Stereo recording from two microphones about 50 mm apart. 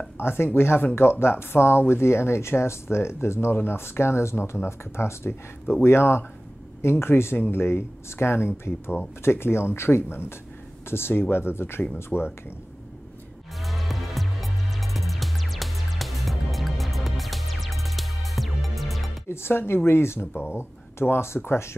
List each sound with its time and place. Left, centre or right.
0.2 s speech: left
12.1 s speech: centre
13.6 s music: centre
19.2 s speech: left
20.3 s speech: left